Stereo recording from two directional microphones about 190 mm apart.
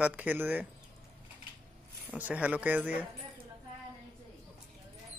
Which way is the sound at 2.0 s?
10° right (ahead or behind).